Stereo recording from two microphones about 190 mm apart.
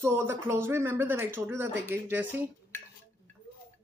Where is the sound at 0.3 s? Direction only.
15° right (ahead or behind).